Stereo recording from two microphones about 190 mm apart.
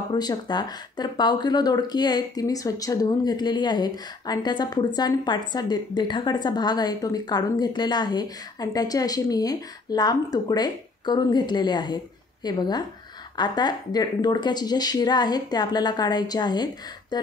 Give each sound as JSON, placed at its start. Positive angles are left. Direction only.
{"t": 0.1, "sound": "speech", "side_deg": 20}